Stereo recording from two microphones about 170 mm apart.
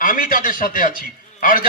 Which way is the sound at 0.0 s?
55° left (ahead or behind).